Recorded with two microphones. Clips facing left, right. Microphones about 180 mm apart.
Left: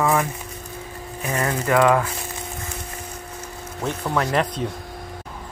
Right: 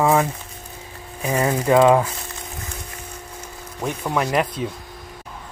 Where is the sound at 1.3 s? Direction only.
10° right (ahead or behind).